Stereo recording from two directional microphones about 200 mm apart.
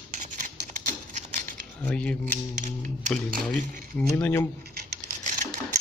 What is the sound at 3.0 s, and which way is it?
Speech, 40° right (ahead or behind).